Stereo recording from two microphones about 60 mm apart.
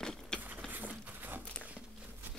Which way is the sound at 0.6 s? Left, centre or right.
Right.